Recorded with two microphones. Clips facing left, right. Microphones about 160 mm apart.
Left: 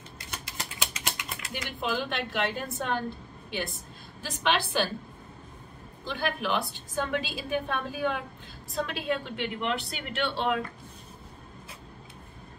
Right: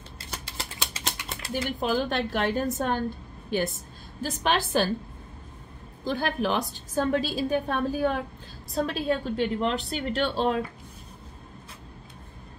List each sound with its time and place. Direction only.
0.9 s a woman's voice: 35° right (ahead or behind)
6.0 s a woman's voice: 40° right (ahead or behind)